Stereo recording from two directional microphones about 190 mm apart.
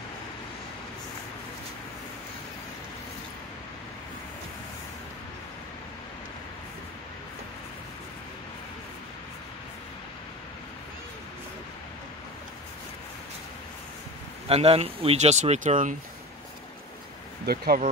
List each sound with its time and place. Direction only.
14.5 s speech: 30° right (ahead or behind)
17.5 s speech: 55° right (ahead or behind)